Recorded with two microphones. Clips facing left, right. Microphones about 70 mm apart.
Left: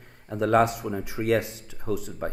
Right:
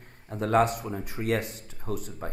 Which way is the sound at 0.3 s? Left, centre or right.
Left.